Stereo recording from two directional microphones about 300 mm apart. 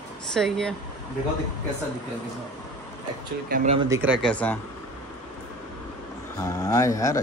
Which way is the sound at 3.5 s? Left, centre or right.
Right.